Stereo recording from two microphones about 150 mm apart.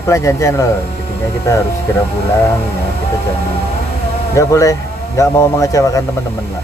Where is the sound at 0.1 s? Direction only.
20° left (ahead or behind).